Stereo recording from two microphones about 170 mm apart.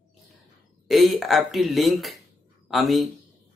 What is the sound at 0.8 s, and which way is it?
Speech, centre (ahead or behind).